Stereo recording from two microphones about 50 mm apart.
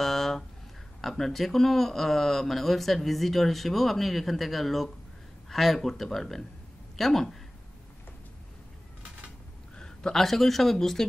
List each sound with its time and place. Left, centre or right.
0.0 s a sound: centre
1.0 s speech: centre
9.8 s speech: centre